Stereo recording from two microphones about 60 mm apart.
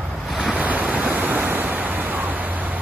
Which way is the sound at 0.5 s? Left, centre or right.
Right.